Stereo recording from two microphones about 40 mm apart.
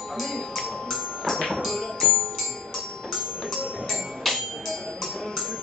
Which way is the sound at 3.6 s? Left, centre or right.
Right.